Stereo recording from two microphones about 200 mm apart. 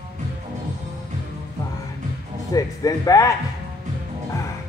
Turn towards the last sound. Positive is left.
turn(degrees=15)  # may be behind; listen again after turning